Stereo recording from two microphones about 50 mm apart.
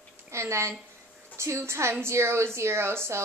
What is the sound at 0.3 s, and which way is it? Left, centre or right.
A woman's voice, right.